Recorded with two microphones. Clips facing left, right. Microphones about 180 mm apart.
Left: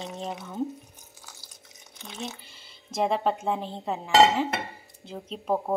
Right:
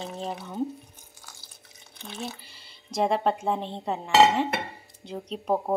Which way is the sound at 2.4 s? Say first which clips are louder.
Left 1 dB; centre (ahead or behind).